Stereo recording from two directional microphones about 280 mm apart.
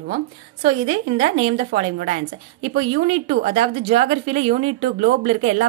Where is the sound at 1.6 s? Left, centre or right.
Right.